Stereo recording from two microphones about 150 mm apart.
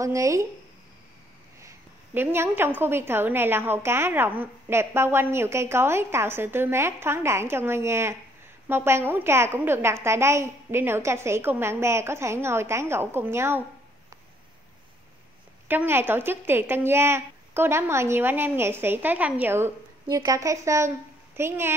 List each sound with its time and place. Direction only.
0.0 s speech: 20° right (ahead or behind)
2.1 s a woman's voice: 15° right (ahead or behind)
15.7 s a woman's voice: 15° right (ahead or behind)